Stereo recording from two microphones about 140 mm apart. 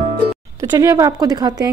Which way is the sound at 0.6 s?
25° right (ahead or behind).